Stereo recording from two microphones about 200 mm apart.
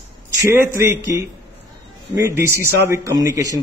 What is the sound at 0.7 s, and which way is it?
A man's voice, 15° right (ahead or behind).